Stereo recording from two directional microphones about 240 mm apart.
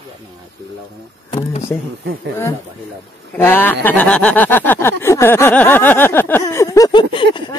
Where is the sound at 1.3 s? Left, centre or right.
Left.